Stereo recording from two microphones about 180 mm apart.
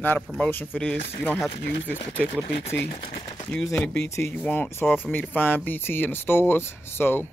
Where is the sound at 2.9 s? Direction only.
30° left (ahead or behind).